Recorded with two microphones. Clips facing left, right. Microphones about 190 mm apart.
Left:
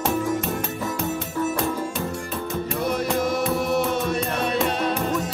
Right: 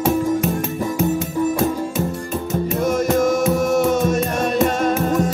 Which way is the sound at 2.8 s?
45° right (ahead or behind).